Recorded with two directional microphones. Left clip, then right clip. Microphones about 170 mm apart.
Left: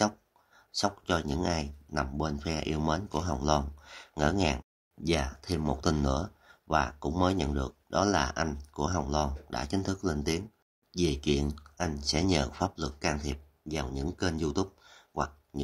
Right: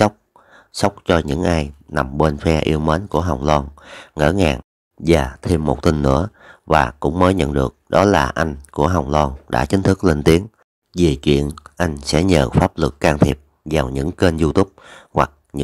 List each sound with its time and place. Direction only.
0.0 s speech: 40° right (ahead or behind)
10.9 s speech: 40° right (ahead or behind)